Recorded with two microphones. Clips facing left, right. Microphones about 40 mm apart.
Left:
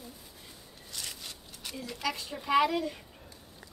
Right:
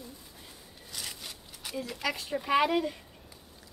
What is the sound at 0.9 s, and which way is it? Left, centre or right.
Zipper, centre.